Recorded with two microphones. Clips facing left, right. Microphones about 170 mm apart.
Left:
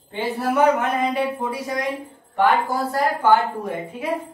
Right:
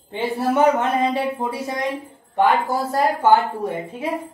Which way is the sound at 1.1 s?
30° right (ahead or behind).